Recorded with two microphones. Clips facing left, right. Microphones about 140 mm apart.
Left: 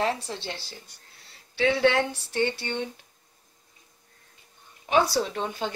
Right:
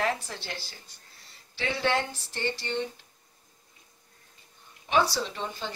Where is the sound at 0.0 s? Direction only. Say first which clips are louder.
Left 2 dB; 25° left (ahead or behind).